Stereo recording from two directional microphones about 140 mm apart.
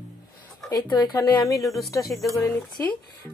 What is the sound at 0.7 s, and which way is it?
Speech, 30° left (ahead or behind).